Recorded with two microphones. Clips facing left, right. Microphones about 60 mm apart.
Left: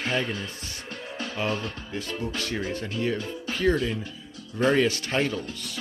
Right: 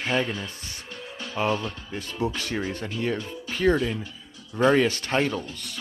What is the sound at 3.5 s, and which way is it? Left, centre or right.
Music, centre.